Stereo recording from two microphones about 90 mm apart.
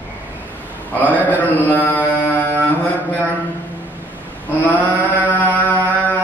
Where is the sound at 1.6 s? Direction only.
20° left (ahead or behind).